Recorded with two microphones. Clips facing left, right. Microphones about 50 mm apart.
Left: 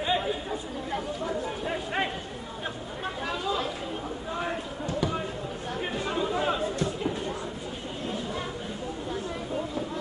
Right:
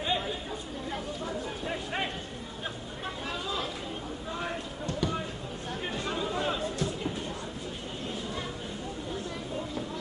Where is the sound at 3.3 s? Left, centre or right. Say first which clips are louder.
Left 5 dB; centre.